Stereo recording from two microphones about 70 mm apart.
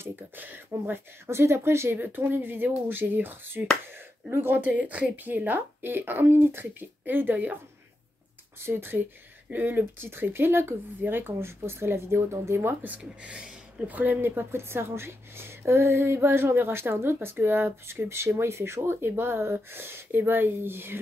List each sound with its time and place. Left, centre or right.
0.0 s a sound: right
0.8 s a woman's voice: right
8.5 s a woman's voice: right
12.9 s a woman's voice: centre; by 21.0 s right